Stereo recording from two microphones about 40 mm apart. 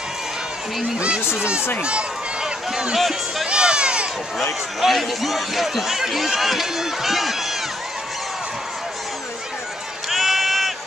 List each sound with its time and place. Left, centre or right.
0.9 s speech: right
3.0 s speech: centre
3.4 s a sound: right
4.7 s speech: centre
10.0 s run: centre